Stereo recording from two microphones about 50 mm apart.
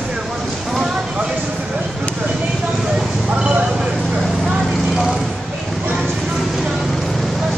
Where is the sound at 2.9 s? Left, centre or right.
Centre.